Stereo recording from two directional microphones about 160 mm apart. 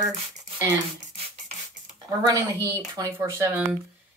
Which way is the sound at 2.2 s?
20° right (ahead or behind).